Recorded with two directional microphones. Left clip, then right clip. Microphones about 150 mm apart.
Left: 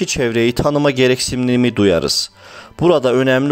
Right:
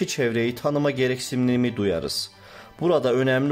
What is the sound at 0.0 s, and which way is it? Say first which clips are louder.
Speech: left 7 dB; 40° left (ahead or behind).